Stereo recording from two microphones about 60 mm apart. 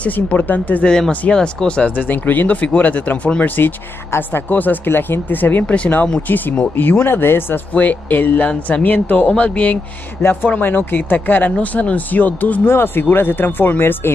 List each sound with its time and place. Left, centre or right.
0.0 s speech: left
0.8 s speech: centre
2.0 s speech: left
6.8 s speech: left
7.7 s speech: left
8.5 s speech: centre
8.8 s speech: left
9.3 s speech: centre
10.5 s speech: left
12.6 s speech: left